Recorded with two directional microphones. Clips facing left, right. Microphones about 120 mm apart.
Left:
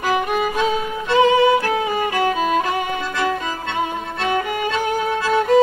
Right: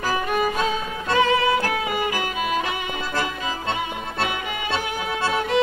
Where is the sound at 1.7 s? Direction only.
30° left (ahead or behind).